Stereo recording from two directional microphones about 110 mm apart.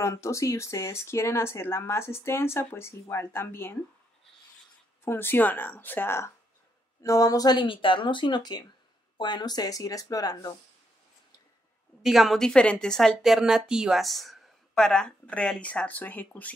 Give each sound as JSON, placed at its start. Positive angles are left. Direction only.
{"t": 0.0, "sound": "speech", "side_deg": 25}
{"t": 5.0, "sound": "speech", "side_deg": 20}
{"t": 12.0, "sound": "a woman's voice", "side_deg": 0}